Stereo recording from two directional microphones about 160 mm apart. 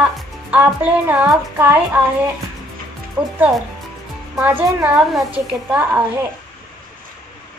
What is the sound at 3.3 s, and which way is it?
Speech, 5° right (ahead or behind).